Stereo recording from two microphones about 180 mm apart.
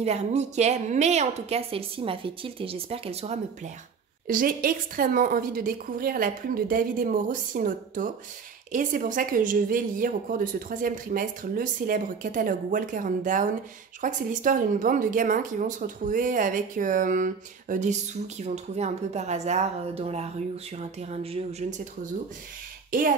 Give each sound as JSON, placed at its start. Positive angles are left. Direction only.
{"t": 0.0, "sound": "a woman's voice", "side_deg": -35}
{"t": 4.3, "sound": "a woman's voice", "side_deg": -50}
{"t": 22.8, "sound": "speech", "side_deg": -50}